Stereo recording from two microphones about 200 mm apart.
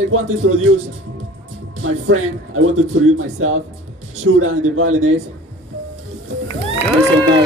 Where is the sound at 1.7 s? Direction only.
90° right.